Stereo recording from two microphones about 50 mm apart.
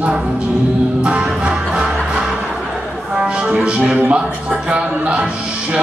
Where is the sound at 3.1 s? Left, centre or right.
Centre.